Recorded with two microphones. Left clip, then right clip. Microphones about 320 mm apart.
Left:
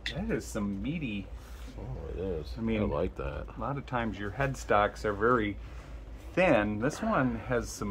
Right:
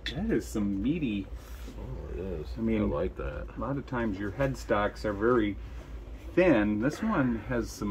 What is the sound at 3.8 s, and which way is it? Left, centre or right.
Speech, centre.